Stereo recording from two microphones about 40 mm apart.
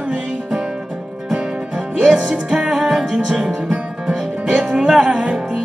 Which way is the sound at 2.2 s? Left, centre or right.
Right.